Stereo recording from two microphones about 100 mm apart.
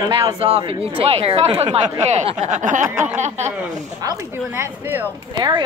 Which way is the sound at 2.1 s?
90° right.